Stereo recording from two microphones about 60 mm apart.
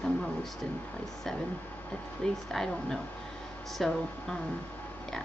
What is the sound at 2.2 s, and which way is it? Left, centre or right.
Speech, centre.